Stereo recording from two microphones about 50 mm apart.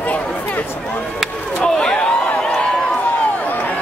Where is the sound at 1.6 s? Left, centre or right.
Centre.